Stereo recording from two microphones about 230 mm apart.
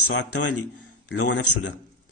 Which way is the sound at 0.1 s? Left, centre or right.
Left.